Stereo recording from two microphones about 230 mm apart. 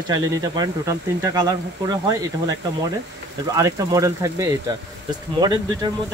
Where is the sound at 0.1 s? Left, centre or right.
Centre.